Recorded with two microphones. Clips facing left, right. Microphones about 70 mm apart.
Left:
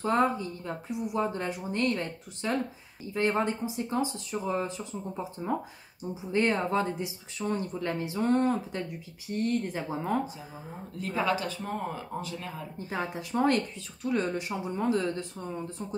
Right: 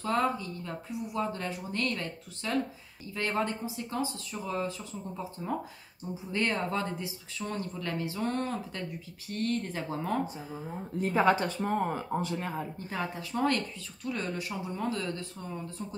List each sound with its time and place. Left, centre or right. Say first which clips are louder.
0.0 s speech: left 3 dB; left
11.1 s speech: right 3 dB; right
13.3 s speech: left 3 dB; centre